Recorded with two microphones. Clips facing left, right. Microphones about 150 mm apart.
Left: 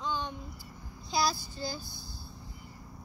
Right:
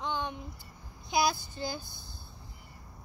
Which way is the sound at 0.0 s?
20° right (ahead or behind).